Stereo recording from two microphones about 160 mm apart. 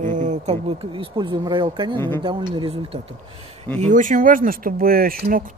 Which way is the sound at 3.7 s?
50° right (ahead or behind).